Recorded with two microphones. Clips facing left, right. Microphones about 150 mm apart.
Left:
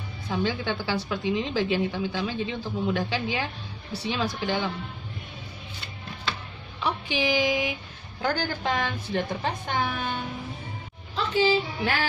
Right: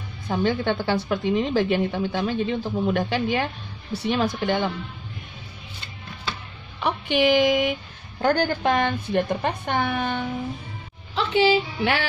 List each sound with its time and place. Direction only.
0.3 s a woman's voice: 55° right (ahead or behind)
6.8 s a woman's voice: 60° right (ahead or behind)
11.1 s a woman's voice: 70° right (ahead or behind)